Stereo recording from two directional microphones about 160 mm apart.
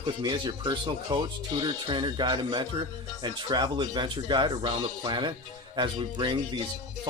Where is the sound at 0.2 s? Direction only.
30° right (ahead or behind).